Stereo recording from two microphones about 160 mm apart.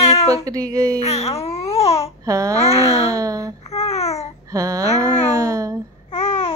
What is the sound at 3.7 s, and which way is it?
Babbling, 40° left (ahead or behind).